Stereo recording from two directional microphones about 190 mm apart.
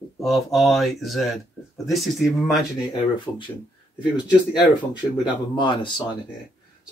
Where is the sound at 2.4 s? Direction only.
25° left (ahead or behind).